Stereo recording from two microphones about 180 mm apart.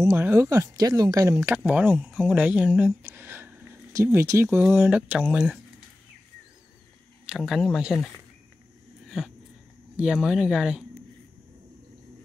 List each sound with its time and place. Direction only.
0.0 s speech: 15° right (ahead or behind)
7.2 s speech: centre (ahead or behind)
9.9 s speech: 5° right (ahead or behind)